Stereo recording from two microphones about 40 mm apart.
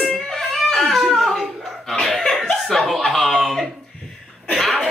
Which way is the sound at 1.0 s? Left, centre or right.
Centre.